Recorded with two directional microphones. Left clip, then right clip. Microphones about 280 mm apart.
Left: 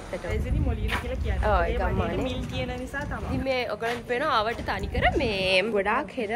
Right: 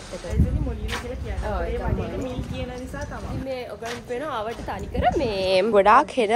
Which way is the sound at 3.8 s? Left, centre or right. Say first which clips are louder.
Left 1 dB; centre.